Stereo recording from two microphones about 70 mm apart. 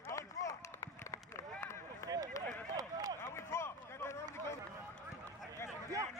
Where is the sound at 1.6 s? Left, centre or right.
Left.